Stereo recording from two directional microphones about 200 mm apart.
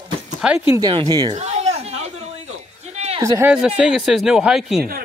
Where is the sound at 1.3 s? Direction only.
35° right (ahead or behind).